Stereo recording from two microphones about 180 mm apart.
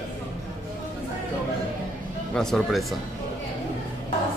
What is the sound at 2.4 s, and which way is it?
Speech, centre (ahead or behind).